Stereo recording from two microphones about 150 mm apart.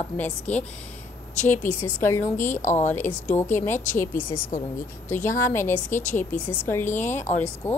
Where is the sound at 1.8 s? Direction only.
15° left (ahead or behind).